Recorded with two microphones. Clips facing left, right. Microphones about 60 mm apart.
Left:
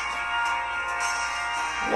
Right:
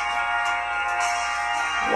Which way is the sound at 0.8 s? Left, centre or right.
Right.